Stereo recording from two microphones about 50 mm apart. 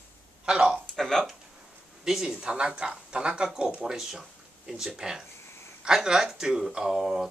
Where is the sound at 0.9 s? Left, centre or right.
Centre.